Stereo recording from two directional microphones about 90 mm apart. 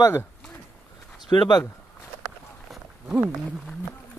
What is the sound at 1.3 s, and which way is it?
Speech, 60° left (ahead or behind).